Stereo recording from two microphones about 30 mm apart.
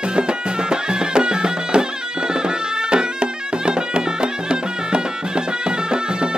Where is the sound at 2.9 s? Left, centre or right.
Right.